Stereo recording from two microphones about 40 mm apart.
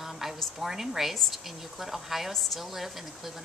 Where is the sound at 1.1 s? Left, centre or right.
Centre.